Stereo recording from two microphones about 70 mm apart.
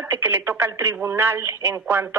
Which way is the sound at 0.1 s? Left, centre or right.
Right.